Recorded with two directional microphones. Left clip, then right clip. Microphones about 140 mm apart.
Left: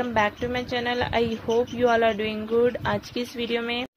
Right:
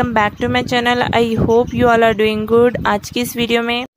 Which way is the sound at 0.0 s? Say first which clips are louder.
Right 8 dB; 50° right (ahead or behind).